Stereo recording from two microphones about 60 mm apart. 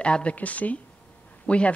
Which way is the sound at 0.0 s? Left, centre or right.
Centre.